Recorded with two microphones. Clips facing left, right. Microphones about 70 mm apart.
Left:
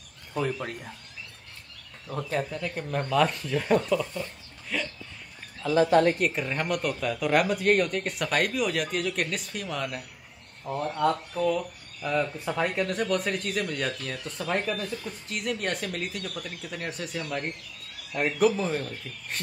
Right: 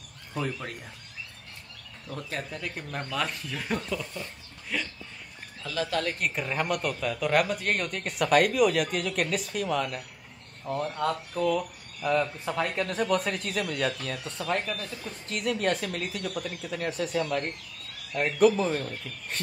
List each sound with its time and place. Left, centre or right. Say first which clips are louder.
0.3 s speech: left 3 dB; centre
2.1 s speech: left 6 dB; centre
4.1 s a sound: left 4 dB; centre
5.7 s speech: left 9 dB; left
6.1 s speech: left 2 dB; centre
14.6 s speech: left 4 dB; centre
14.9 s speech: left 2 dB; centre